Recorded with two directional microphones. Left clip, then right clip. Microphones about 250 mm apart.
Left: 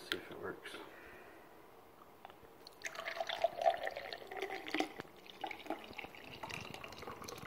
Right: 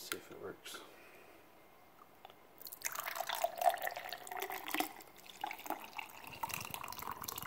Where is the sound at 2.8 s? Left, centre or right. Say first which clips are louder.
Right 1 dB; right.